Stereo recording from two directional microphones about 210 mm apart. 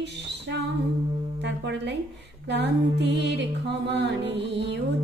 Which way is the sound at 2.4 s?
55° right (ahead or behind).